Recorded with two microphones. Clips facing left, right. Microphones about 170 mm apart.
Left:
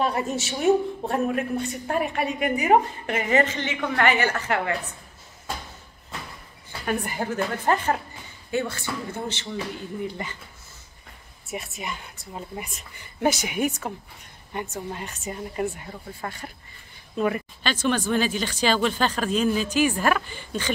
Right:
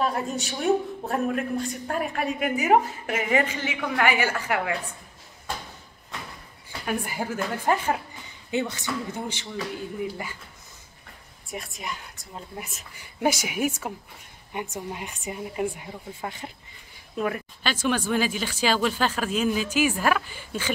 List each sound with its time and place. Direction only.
0.0 s a man's voice: centre (ahead or behind)
7.1 s speech: 10° right (ahead or behind)
11.4 s a man's voice: 5° left (ahead or behind); by 16.5 s 20° right (ahead or behind)
17.2 s speech: 5° right (ahead or behind)